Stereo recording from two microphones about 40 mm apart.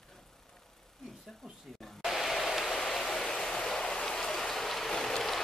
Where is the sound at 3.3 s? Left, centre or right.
Centre.